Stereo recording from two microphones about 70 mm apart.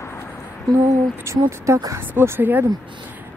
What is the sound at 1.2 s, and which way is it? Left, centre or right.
Speech, right.